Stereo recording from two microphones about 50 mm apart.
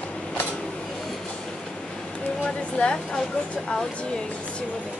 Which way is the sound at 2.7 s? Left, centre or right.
Centre.